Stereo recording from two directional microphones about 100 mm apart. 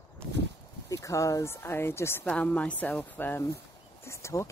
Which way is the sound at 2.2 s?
15° left (ahead or behind).